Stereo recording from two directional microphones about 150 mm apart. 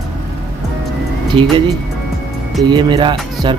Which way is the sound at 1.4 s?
35° right (ahead or behind).